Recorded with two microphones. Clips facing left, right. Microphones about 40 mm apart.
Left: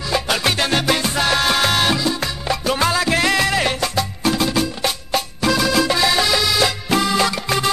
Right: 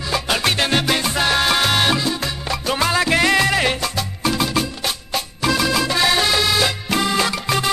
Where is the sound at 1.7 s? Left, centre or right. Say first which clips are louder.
Even; centre.